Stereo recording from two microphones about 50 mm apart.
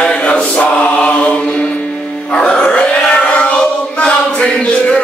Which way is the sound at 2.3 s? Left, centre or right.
Left.